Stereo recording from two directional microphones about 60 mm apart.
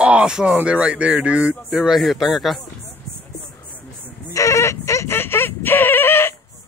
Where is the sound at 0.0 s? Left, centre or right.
Centre.